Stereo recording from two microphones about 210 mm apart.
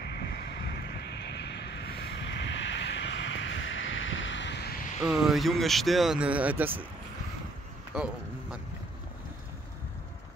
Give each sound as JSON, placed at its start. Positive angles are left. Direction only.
{"t": 0.3, "sound": "vehicle", "side_deg": 50}
{"t": 5.0, "sound": "speech", "side_deg": 0}
{"t": 7.9, "sound": "a sound", "side_deg": -5}